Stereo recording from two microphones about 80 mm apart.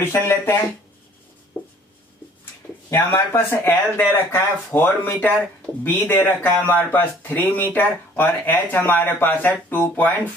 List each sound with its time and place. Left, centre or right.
0.0 s speech: left
2.9 s speech: left